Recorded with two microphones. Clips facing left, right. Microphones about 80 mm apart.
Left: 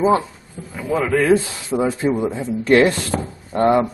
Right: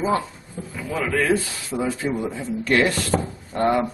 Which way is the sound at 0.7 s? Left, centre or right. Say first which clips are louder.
Left 5 dB; centre.